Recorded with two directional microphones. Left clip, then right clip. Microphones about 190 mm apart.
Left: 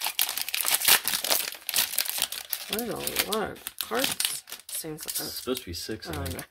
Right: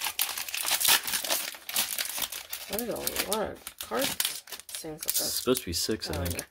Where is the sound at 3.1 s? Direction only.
35° left (ahead or behind).